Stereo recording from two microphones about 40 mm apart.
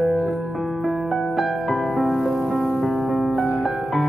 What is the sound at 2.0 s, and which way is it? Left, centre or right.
Music, centre.